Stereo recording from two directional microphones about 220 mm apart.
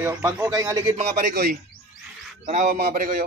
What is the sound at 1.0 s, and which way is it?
A man's voice, 40° right (ahead or behind).